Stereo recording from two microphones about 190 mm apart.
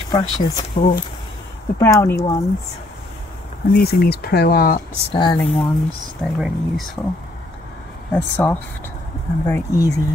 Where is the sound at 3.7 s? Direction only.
55° left (ahead or behind).